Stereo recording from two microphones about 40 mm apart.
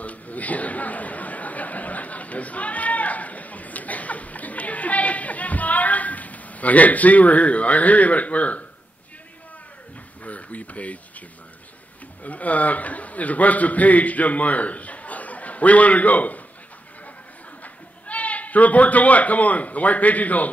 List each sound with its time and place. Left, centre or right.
0.0 s chatter: left
10.2 s a sound: left
12.2 s a man's voice: left
18.0 s speech: left